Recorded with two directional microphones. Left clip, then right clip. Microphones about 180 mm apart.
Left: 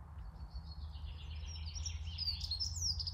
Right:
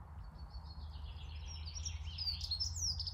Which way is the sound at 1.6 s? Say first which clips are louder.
Even; 60° right (ahead or behind).